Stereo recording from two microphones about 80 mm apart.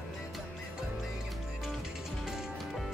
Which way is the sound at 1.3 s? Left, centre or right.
Centre.